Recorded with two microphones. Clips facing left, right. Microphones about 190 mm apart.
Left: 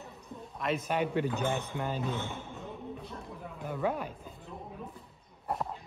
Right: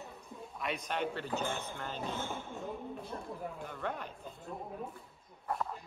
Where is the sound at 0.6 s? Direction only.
Centre (ahead or behind).